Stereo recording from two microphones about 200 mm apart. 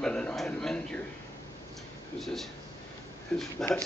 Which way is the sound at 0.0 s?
5° left (ahead or behind).